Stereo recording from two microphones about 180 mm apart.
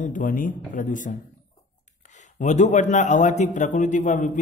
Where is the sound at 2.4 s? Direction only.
40° left (ahead or behind).